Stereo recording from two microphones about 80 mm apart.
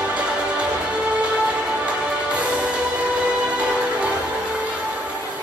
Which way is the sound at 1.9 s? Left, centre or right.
Centre.